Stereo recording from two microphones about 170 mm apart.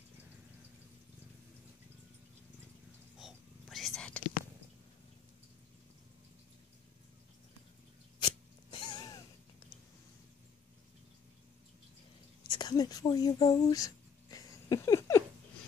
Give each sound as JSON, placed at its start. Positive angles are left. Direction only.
{"t": 3.2, "sound": "whispering", "side_deg": 0}
{"t": 8.2, "sound": "sneeze", "side_deg": 30}
{"t": 12.4, "sound": "a sound", "side_deg": 25}